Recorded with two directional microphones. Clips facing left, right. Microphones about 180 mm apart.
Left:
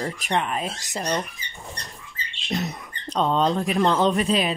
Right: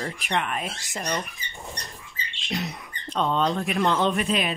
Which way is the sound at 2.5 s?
45° left (ahead or behind).